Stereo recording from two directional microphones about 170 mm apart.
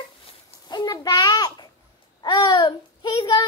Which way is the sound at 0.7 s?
25° left (ahead or behind).